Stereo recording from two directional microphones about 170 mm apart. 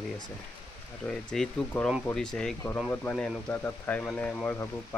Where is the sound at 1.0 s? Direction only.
5° left (ahead or behind).